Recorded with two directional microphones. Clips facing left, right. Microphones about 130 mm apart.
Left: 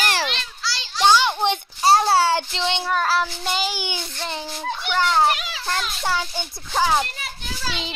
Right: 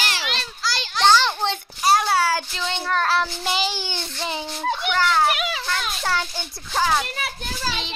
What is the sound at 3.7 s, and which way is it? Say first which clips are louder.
Speech: left 1 dB; 10° left (ahead or behind).